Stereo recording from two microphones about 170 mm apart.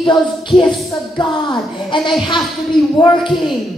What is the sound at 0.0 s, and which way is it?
A woman's voice, 25° left (ahead or behind).